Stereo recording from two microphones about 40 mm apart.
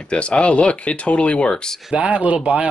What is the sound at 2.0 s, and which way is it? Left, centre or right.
Speech, right.